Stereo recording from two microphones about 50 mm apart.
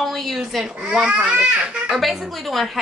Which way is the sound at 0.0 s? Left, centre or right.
Centre.